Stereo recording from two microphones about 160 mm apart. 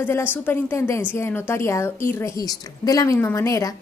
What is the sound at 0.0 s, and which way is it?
A woman's voice, 10° left (ahead or behind).